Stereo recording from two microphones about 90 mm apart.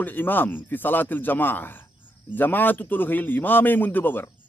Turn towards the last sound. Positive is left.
turn(degrees=20)  # may be behind; listen again after turning